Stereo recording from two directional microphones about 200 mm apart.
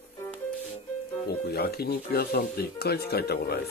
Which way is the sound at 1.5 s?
55° left (ahead or behind).